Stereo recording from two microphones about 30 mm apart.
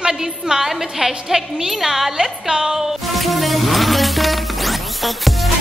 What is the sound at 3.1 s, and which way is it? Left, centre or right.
Music, centre.